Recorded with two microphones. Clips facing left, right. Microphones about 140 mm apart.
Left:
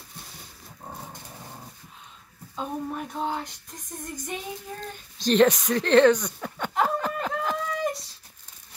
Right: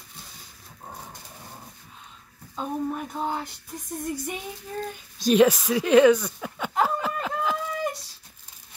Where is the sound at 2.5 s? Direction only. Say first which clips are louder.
Right 2 dB; centre (ahead or behind).